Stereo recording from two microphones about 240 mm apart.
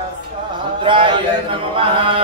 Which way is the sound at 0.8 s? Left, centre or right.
Right.